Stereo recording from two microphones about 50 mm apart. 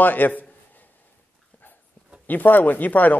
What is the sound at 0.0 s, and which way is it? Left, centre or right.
Speech, left.